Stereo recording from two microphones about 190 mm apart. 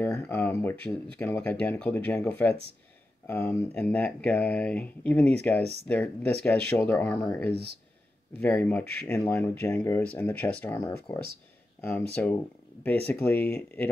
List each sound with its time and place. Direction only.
0.0 s speech: 10° left (ahead or behind)
7.5 s speech: 60° right (ahead or behind)
8.4 s speech: 10° left (ahead or behind)